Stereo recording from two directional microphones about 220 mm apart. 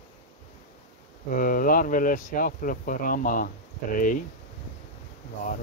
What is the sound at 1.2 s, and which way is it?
Speech, 40° left (ahead or behind).